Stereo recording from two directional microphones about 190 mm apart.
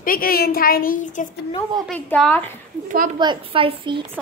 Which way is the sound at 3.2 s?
25° right (ahead or behind).